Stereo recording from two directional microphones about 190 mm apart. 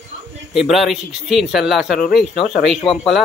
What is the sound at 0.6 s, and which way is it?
A man's voice, centre (ahead or behind).